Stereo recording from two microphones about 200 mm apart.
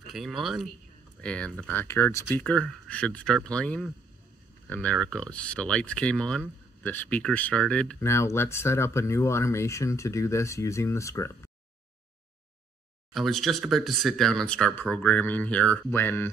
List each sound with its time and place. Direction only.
0.0 s speech: centre (ahead or behind)
13.1 s speech: centre (ahead or behind)